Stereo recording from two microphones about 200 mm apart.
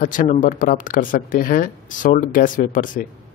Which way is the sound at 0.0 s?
45° left (ahead or behind).